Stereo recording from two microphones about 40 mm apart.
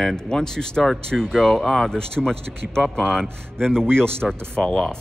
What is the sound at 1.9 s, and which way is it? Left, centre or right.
Speech, centre.